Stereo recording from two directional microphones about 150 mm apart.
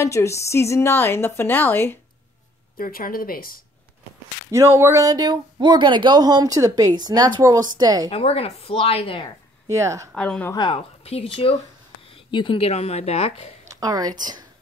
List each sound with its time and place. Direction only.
0.0 s a woman's voice: 20° left (ahead or behind)
2.8 s speech: 70° left (ahead or behind)
4.5 s speech: 20° right (ahead or behind)
8.1 s speech: 40° left (ahead or behind)
9.7 s speech: 20° right (ahead or behind)
10.1 s a woman's voice: 5° left (ahead or behind)
10.5 s speech: 30° left (ahead or behind)
10.8 s speech: 40° left (ahead or behind)
13.7 s speech: 25° right (ahead or behind)